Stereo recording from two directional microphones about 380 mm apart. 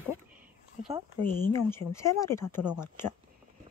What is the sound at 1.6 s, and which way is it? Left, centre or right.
Speech, centre.